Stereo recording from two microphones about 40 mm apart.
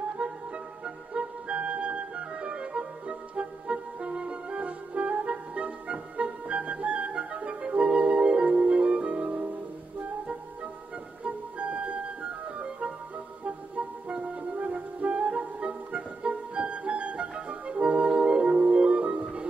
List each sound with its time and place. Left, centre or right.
0.2 s music: right
11.2 s music: right